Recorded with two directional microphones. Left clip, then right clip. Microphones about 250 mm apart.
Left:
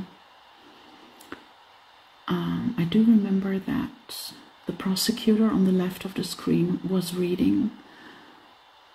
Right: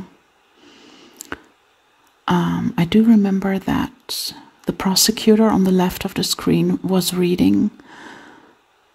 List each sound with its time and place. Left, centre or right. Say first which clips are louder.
2.2 s speech: right 9 dB; right